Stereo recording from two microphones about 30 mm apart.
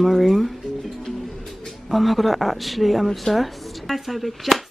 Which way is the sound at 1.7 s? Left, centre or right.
Centre.